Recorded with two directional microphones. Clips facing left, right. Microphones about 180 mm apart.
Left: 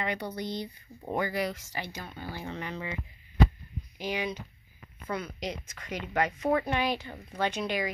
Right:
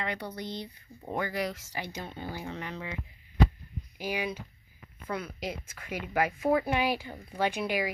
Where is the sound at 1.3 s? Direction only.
Centre (ahead or behind).